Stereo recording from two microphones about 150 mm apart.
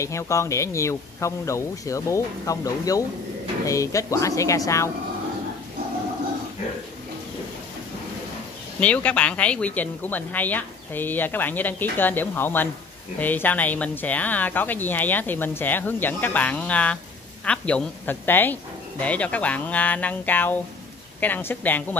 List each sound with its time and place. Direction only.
0.0 s speech: 20° left (ahead or behind)
8.7 s speech: 10° left (ahead or behind)